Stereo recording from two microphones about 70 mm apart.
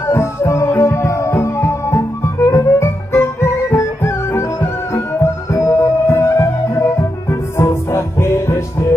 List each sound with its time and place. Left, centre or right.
0.0 s music: left